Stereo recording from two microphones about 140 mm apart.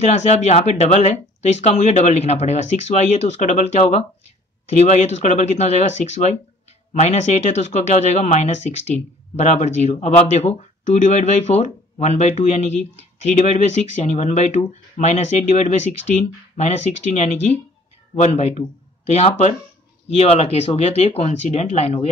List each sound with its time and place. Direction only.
0.0 s speech: 50° left (ahead or behind)